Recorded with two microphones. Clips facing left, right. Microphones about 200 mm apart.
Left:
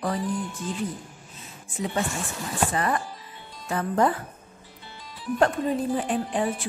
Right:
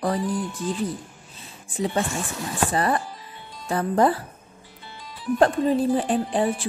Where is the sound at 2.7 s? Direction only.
35° right (ahead or behind).